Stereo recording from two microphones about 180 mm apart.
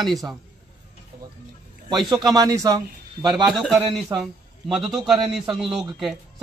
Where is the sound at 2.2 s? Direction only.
20° right (ahead or behind).